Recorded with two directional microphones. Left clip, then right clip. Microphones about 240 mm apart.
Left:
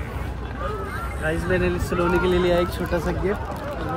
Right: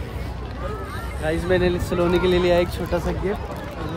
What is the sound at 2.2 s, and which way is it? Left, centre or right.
Speech, centre.